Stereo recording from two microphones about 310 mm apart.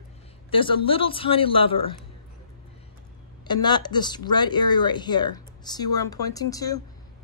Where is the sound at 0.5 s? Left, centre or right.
Centre.